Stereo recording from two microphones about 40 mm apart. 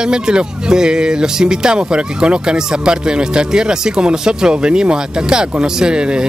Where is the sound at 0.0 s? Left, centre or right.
Right.